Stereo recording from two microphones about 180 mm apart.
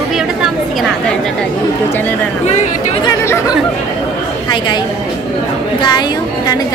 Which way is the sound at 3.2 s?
15° left (ahead or behind).